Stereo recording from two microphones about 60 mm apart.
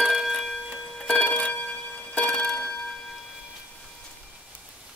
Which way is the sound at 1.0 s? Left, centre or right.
Left.